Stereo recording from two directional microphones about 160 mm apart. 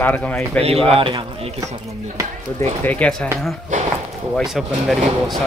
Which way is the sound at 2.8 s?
10° left (ahead or behind).